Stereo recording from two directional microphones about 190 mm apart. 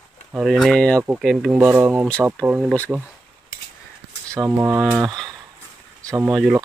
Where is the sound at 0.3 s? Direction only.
Centre (ahead or behind).